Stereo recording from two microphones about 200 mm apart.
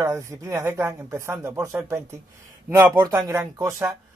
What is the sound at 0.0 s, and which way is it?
Speech, 15° right (ahead or behind).